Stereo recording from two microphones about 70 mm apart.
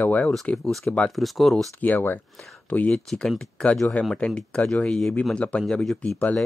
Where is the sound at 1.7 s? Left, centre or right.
Left.